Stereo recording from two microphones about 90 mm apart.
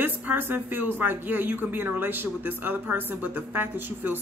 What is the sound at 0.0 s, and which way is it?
Speech, 20° right (ahead or behind).